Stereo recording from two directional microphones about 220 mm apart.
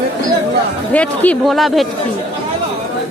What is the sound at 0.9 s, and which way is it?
Speech, 5° left (ahead or behind).